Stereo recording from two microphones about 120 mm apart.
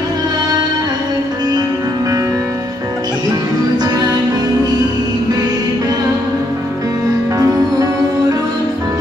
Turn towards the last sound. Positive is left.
turn(degrees=-30)  # may be behind; listen again after turning